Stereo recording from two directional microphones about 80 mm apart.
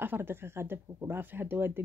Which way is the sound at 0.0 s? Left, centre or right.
Right.